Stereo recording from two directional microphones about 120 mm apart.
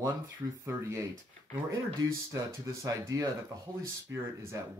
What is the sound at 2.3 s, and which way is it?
Speech, 25° right (ahead or behind).